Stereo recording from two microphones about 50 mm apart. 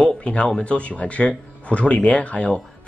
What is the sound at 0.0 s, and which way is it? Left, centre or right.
Speech, centre.